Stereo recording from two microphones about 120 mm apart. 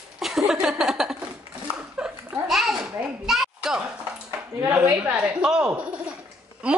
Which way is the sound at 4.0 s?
20° right (ahead or behind).